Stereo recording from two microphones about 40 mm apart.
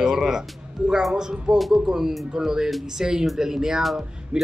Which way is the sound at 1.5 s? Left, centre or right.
Centre.